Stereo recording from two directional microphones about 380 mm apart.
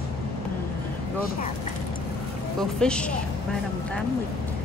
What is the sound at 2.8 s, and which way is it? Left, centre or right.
Speech, centre.